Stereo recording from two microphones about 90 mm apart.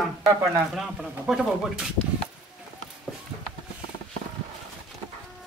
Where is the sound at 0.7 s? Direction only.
Centre (ahead or behind).